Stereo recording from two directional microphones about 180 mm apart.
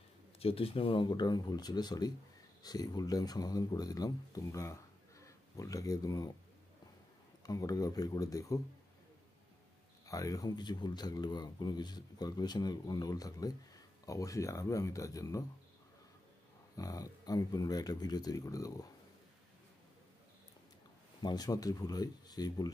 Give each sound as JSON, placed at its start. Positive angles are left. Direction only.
{"t": 0.4, "sound": "speech", "side_deg": 30}
{"t": 7.4, "sound": "speech", "side_deg": 20}
{"t": 10.0, "sound": "speech", "side_deg": 20}
{"t": 16.7, "sound": "speech", "side_deg": 20}
{"t": 21.2, "sound": "speech", "side_deg": 25}